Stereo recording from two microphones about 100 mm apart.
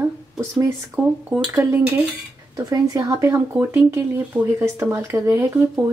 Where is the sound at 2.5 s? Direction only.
40° right (ahead or behind).